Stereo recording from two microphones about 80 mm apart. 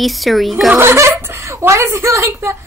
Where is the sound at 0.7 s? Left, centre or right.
Right.